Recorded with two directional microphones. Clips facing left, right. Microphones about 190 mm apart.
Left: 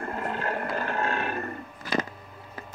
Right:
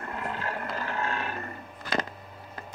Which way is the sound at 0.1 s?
50° left (ahead or behind).